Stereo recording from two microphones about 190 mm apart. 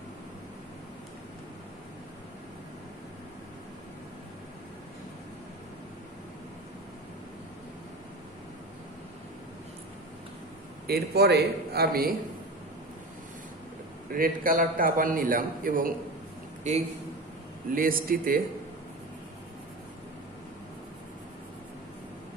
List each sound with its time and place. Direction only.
10.9 s a man's voice: 55° right (ahead or behind)
14.1 s a man's voice: 50° right (ahead or behind)
17.7 s a man's voice: 50° right (ahead or behind)